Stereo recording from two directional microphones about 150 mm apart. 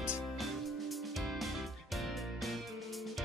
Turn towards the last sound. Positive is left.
turn(degrees=0)  # may be behind; listen again after turning